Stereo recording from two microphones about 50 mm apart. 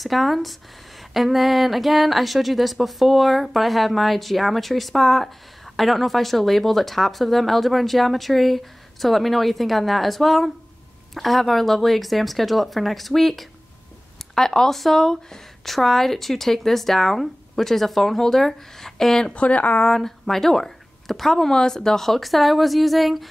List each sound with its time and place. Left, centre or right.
0.0 s speech: centre
19.3 s a woman's voice: left
19.9 s speech: centre